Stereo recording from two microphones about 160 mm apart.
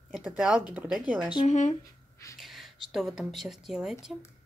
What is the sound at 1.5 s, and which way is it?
Speech, 45° left (ahead or behind).